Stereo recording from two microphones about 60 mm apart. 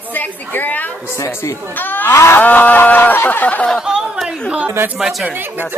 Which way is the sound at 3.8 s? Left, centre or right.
Centre.